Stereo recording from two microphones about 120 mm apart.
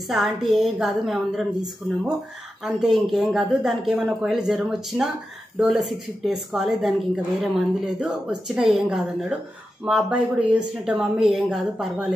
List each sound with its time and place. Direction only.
0.1 s a woman's voice: centre (ahead or behind)